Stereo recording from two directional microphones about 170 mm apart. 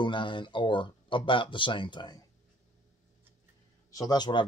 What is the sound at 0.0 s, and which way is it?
Speech, 30° left (ahead or behind).